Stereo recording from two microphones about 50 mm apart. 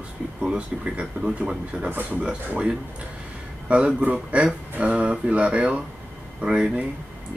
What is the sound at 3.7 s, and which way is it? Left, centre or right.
Speech, right.